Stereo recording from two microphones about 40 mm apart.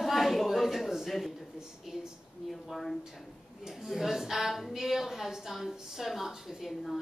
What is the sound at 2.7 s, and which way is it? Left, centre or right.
Speech, centre.